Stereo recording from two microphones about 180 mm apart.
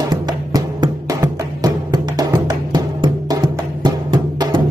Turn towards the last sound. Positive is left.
turn(degrees=-25)  # may be behind; listen again after turning